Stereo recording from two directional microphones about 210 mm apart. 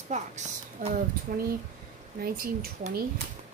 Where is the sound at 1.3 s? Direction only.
45° right (ahead or behind).